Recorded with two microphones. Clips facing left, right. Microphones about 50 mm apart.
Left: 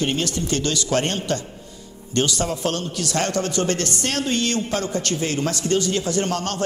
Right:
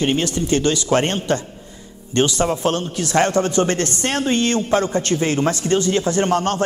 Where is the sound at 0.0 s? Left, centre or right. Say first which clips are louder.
Right 4 dB; right.